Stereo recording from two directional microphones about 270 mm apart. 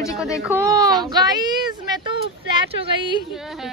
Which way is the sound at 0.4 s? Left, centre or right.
Centre.